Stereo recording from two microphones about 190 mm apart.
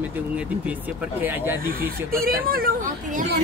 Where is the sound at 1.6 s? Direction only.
50° right (ahead or behind).